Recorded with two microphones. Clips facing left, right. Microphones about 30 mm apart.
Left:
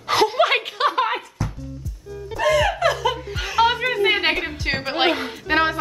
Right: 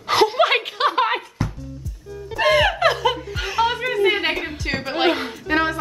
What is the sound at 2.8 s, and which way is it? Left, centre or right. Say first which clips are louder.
Laughter: right 2 dB; right.